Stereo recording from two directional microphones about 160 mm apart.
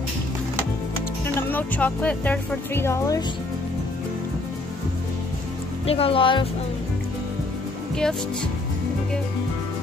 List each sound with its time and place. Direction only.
1.2 s speech: 10° left (ahead or behind)
5.9 s speech: 35° left (ahead or behind)
7.9 s speech: 5° left (ahead or behind)